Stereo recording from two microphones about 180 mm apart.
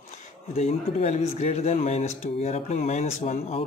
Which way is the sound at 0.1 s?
35° left (ahead or behind).